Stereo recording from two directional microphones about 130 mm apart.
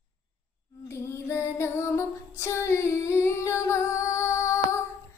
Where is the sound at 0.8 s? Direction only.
20° left (ahead or behind).